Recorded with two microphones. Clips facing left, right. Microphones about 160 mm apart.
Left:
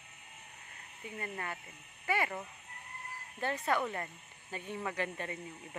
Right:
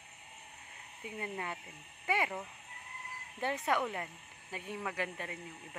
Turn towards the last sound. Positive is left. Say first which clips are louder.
# left 2 dB
turn(degrees=-5)  # may be behind; listen again after turning